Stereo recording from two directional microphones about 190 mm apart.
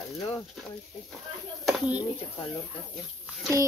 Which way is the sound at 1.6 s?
5° right (ahead or behind).